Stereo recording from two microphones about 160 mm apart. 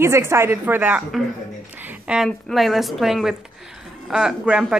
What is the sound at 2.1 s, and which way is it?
A woman's voice, centre (ahead or behind).